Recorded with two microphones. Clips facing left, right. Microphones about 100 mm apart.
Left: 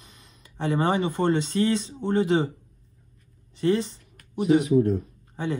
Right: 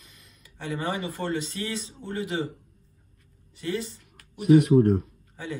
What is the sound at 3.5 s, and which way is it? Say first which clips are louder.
Speech: left 8 dB; 30° left (ahead or behind).